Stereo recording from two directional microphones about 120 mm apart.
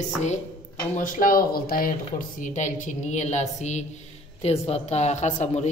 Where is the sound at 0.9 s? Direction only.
90° left.